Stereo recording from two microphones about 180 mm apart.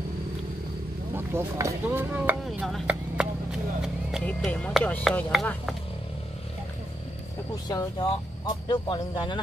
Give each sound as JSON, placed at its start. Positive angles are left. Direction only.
{"t": 1.1, "sound": "speech", "side_deg": -15}
{"t": 2.4, "sound": "speech", "side_deg": 0}
{"t": 7.6, "sound": "speech", "side_deg": 20}